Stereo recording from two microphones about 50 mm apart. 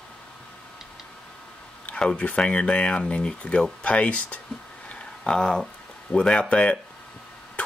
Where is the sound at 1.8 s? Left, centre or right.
Left.